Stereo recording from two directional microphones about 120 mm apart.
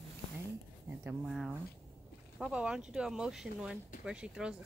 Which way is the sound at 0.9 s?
20° right (ahead or behind).